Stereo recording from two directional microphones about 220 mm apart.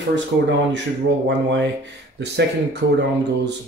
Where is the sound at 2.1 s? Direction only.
50° right (ahead or behind).